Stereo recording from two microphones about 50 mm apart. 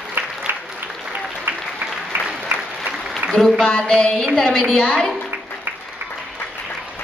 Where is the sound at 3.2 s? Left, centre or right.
Right.